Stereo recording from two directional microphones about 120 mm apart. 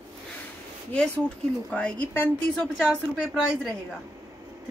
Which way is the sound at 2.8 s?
Centre (ahead or behind).